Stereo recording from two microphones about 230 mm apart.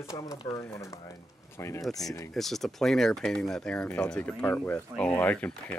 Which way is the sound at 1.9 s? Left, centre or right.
Centre.